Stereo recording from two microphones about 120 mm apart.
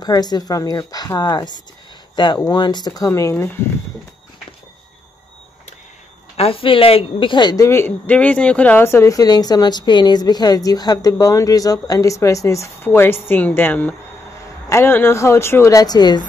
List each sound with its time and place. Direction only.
0.0 s speech: 35° left (ahead or behind)
3.1 s speech: 20° left (ahead or behind)
6.3 s speech: 55° left (ahead or behind)
7.6 s speech: 20° left (ahead or behind); by 16.3 s 35° left (ahead or behind)